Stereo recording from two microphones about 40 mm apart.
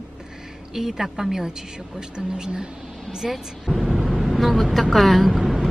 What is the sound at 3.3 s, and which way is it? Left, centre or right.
Speech, centre.